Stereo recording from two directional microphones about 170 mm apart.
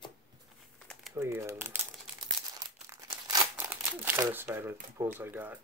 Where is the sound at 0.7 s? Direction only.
5° left (ahead or behind).